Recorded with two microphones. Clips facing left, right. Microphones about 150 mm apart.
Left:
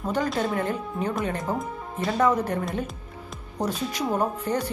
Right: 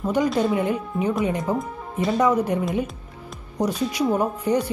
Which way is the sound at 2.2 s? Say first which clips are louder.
Right 1 dB; 10° right (ahead or behind).